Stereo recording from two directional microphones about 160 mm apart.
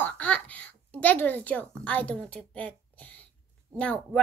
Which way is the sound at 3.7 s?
15° right (ahead or behind).